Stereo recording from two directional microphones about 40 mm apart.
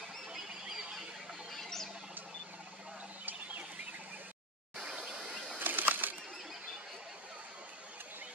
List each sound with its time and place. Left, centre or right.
1.5 s bird: centre
3.3 s chicken: right
4.9 s a sound: right
5.6 s bird: right